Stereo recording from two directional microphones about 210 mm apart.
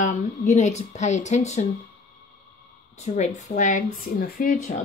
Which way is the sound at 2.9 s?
30° left (ahead or behind).